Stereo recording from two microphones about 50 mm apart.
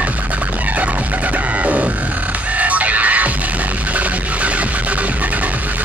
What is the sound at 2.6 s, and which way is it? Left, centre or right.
Music, right.